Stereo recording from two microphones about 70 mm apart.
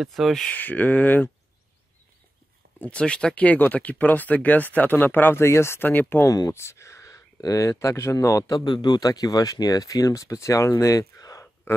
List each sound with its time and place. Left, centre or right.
0.0 s speech: centre
0.4 s speech: left
2.8 s speech: centre
6.2 s speech: left
6.5 s speech: left
8.5 s speech: left